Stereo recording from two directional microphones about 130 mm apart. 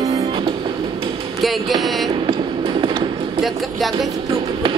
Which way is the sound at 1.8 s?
Centre (ahead or behind).